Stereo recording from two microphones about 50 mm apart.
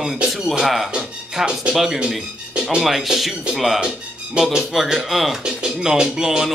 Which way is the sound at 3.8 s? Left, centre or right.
Centre.